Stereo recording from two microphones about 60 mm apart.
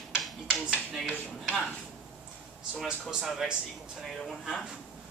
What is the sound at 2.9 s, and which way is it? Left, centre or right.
Speech, centre.